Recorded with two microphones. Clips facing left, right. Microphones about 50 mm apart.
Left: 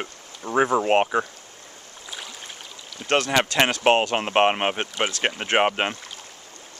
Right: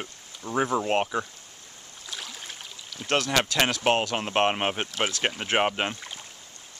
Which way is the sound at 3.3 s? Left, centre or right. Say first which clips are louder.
Left 3 dB; left.